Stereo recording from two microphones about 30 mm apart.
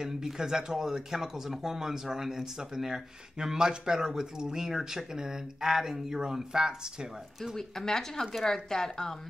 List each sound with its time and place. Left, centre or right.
0.0 s speech: centre
7.5 s speech: centre